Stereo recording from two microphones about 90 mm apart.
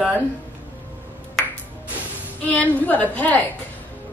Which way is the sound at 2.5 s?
20° left (ahead or behind).